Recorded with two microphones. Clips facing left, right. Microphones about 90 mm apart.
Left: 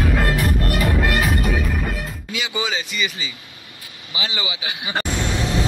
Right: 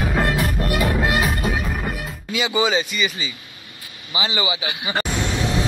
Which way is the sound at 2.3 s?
35° right (ahead or behind).